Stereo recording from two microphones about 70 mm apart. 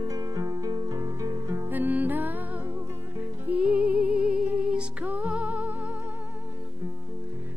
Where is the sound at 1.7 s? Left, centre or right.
Right.